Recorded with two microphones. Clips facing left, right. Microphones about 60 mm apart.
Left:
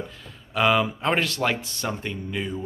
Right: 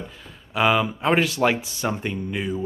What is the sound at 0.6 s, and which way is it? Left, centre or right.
Speech, centre.